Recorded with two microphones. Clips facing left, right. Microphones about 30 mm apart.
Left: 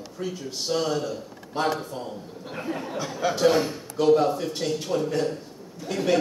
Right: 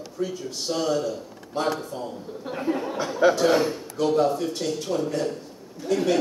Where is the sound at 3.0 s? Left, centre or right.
Centre.